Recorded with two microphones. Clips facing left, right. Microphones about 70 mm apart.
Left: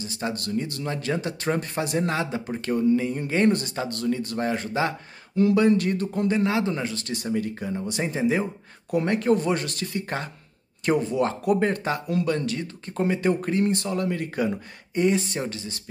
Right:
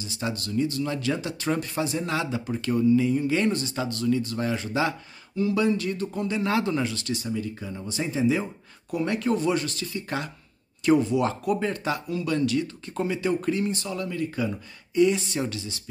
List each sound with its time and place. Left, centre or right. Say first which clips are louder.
0.0 s speech: left 2 dB; left
2.1 s speech: even; left
5.3 s speech: left 5 dB; left
5.6 s speech: left 4 dB; left
6.4 s speech: even; left
8.0 s speech: even; left